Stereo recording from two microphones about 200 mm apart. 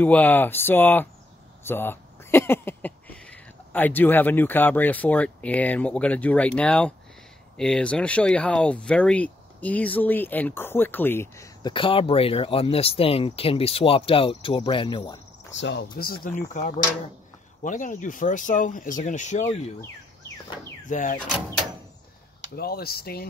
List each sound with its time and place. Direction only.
0.0 s speech: 10° left (ahead or behind); by 15.1 s 25° left (ahead or behind)
15.5 s speech: 60° left (ahead or behind)
16.3 s speech: 40° left (ahead or behind)
20.9 s speech: 40° left (ahead or behind)
22.6 s speech: 50° left (ahead or behind)